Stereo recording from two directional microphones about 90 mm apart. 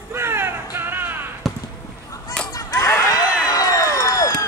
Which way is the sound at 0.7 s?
25° right (ahead or behind).